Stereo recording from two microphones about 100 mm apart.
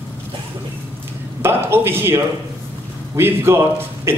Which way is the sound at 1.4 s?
25° right (ahead or behind).